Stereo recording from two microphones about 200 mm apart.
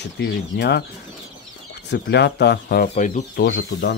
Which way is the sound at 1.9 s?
55° left (ahead or behind).